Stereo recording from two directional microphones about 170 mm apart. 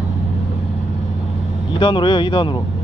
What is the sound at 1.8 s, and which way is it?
Speech, 25° left (ahead or behind).